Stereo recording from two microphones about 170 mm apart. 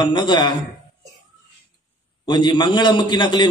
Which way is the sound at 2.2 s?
25° left (ahead or behind).